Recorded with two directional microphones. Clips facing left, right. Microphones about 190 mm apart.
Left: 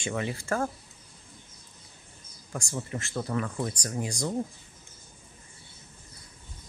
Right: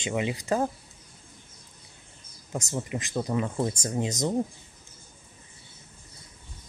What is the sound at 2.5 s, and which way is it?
Speech, 20° right (ahead or behind).